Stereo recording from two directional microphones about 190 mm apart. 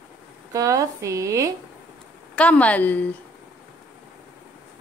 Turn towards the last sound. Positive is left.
turn(degrees=10)  # may be behind; listen again after turning